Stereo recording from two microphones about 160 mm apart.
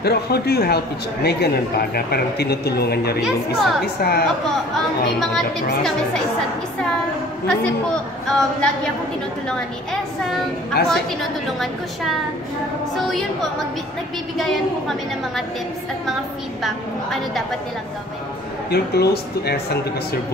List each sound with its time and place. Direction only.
0.0 s a man's voice: 85° left
3.2 s a woman's voice: 5° right (ahead or behind)
3.8 s a woman's voice: 80° left
7.4 s a woman's voice: 5° left (ahead or behind)
10.8 s a woman's voice: 90° left
12.9 s a woman's voice: centre (ahead or behind)
16.6 s a woman's voice: centre (ahead or behind)
18.7 s a man's voice: 85° left